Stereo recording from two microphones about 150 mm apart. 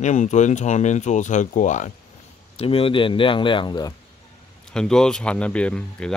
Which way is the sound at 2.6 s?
40° left (ahead or behind).